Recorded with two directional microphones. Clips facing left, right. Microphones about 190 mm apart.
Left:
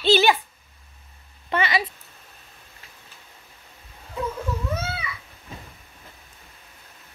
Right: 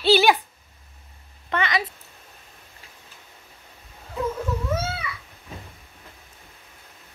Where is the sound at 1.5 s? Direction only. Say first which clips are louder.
Left 1 dB; 5° left (ahead or behind).